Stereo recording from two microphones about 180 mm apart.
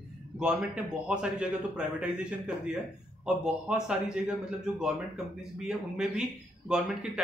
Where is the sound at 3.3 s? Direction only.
5° right (ahead or behind).